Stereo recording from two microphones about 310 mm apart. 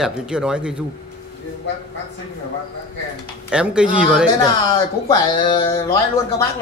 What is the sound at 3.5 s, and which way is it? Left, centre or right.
Speech, centre.